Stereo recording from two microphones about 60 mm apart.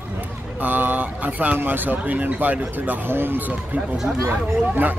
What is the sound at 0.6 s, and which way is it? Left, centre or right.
Speech, right.